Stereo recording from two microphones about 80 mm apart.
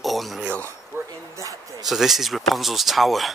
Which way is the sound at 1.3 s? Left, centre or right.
Right.